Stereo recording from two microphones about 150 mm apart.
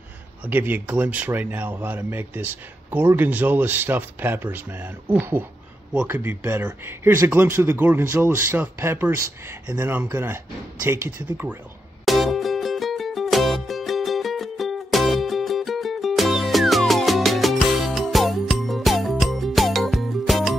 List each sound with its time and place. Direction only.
0.5 s a man's voice: 15° right (ahead or behind)
12.0 s music: centre (ahead or behind)